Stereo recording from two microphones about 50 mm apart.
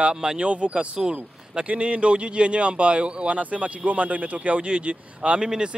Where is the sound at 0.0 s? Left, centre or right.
Centre.